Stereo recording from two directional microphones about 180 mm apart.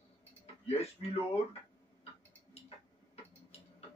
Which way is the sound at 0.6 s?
35° left (ahead or behind).